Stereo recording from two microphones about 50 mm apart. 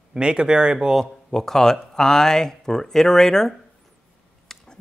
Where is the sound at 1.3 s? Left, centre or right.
Centre.